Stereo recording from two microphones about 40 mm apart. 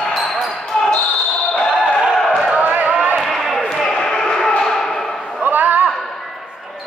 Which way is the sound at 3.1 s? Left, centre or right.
Centre.